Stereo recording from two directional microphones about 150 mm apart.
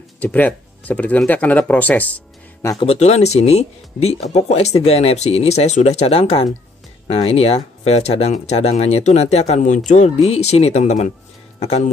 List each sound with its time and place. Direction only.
0.2 s speech: 10° left (ahead or behind)
2.8 s speech: 45° left (ahead or behind)